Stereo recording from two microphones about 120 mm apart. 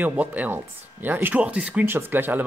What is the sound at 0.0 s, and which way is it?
Speech, 15° right (ahead or behind).